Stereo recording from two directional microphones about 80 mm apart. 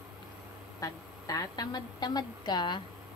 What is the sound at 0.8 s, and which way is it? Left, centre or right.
A woman's voice, left.